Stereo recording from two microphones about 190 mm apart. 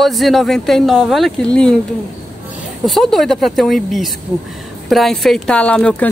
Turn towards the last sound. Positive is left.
turn(degrees=5)  # may be behind; listen again after turning